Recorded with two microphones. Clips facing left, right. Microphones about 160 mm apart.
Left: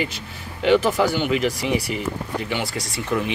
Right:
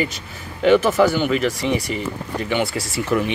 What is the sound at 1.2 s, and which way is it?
Speech, centre (ahead or behind).